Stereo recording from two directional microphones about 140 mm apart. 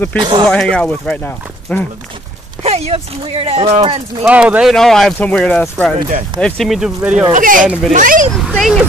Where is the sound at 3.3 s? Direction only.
50° right (ahead or behind).